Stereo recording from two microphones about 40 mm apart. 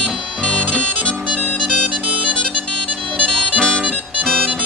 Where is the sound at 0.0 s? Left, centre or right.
Left.